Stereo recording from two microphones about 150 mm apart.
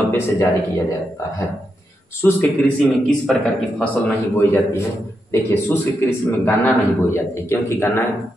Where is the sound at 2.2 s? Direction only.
15° left (ahead or behind).